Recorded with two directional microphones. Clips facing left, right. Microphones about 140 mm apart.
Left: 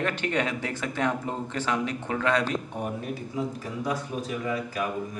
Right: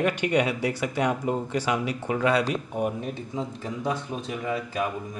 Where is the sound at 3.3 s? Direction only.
25° right (ahead or behind).